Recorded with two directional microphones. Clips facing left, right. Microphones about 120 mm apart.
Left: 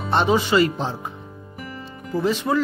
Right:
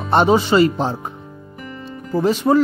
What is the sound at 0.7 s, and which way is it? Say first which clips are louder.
Speech: right 5 dB; 45° right (ahead or behind).